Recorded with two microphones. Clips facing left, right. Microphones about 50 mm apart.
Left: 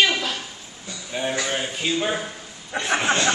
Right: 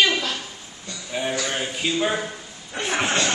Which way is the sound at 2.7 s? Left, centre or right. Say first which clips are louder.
Left 2 dB; left.